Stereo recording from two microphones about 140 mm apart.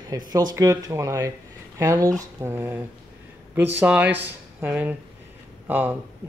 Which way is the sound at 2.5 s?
15° right (ahead or behind).